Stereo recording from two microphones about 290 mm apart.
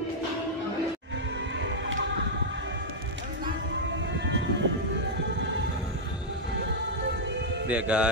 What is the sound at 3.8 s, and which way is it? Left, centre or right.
Music, right.